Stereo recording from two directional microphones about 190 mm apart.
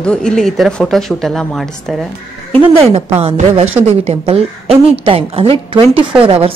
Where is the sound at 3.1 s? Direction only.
30° right (ahead or behind).